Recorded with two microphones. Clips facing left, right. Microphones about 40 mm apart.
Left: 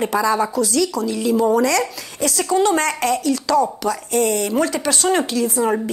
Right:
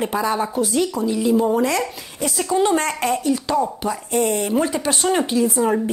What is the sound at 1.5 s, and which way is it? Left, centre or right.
Speech, left.